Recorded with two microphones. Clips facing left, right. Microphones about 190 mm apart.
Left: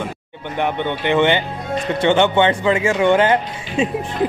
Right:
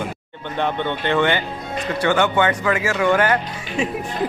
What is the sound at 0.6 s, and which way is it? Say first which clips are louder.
Speech: left 2 dB; 15° left (ahead or behind).